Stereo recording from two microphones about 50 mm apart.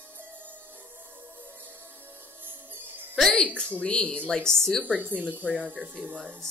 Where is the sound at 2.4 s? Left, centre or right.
Right.